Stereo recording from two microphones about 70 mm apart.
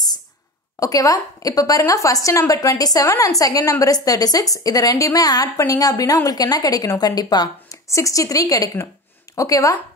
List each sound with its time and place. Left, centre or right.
0.7 s a woman's voice: left
7.9 s a woman's voice: left